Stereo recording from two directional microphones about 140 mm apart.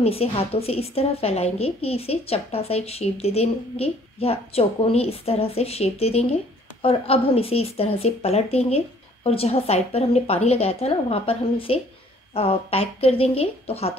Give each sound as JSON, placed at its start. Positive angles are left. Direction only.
{"t": 0.0, "sound": "a woman's voice", "side_deg": 45}